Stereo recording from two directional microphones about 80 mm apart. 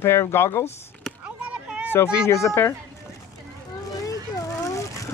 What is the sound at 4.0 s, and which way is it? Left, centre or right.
Vehicle, left.